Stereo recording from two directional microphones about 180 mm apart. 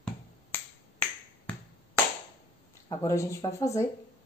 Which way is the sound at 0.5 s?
10° left (ahead or behind).